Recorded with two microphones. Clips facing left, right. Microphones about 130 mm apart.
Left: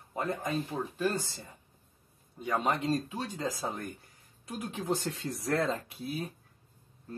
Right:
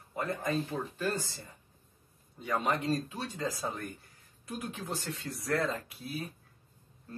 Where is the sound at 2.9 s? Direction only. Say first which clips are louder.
Left 1 dB; 25° left (ahead or behind).